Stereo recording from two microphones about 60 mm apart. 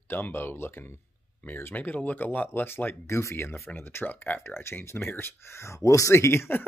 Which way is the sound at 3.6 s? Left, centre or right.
Left.